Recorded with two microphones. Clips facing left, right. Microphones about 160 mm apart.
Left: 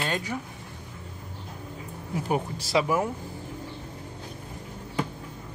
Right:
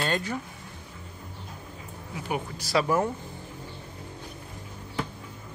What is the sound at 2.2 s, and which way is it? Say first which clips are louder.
Speech: left 3 dB; 30° left (ahead or behind).